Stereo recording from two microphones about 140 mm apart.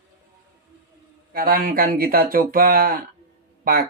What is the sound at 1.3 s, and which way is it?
Speech, 90° right.